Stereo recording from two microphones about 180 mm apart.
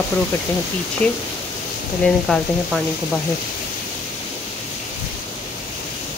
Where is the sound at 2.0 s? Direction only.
Centre (ahead or behind).